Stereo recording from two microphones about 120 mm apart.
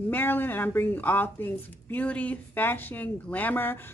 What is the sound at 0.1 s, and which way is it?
Speech, 15° left (ahead or behind).